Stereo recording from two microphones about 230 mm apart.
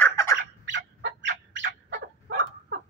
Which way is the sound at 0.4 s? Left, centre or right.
Right.